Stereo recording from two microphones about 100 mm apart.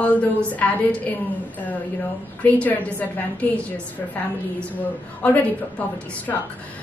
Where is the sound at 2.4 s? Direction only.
15° left (ahead or behind).